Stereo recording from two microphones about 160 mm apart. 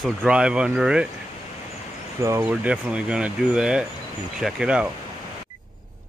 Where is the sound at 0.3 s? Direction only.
5° right (ahead or behind).